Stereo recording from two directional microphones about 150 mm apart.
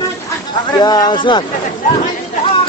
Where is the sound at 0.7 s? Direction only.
25° left (ahead or behind).